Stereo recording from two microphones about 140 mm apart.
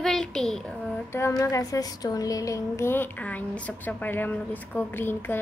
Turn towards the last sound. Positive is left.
turn(degrees=15)  # may be behind; listen again after turning